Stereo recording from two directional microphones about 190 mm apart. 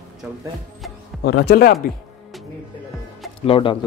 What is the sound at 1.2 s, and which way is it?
Speech, 60° left (ahead or behind).